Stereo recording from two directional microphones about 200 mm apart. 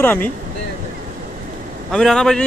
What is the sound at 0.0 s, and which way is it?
Speech, 10° left (ahead or behind).